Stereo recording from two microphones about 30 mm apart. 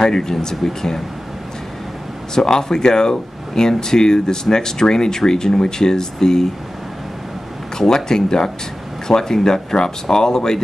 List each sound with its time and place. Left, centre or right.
0.0 s speech: centre
2.3 s speech: left
7.7 s speech: centre